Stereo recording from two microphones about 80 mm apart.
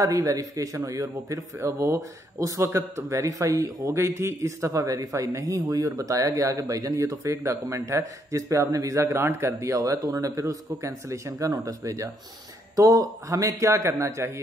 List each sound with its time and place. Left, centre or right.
0.0 s a man's voice: right